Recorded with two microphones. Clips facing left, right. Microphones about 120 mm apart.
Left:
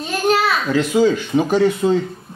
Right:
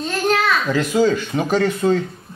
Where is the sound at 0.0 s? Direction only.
5° left (ahead or behind).